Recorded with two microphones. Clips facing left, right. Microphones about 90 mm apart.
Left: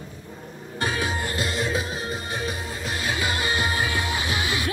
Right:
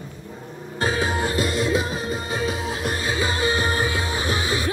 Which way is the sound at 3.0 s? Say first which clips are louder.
Right 2 dB; 30° right (ahead or behind).